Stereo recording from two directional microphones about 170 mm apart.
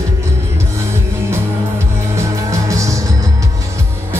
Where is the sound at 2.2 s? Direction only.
20° right (ahead or behind).